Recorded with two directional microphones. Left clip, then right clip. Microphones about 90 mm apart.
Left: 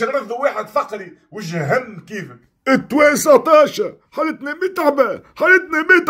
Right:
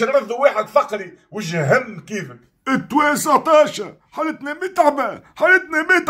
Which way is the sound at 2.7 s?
Centre (ahead or behind).